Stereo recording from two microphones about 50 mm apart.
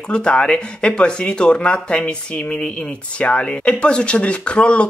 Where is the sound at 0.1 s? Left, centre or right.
Left.